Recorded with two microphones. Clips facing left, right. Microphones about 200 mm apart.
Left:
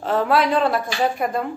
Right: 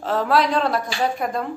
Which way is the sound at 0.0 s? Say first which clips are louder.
Left 1 dB; centre (ahead or behind).